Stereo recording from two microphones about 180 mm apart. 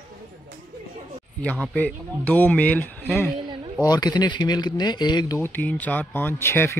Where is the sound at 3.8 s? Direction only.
20° left (ahead or behind).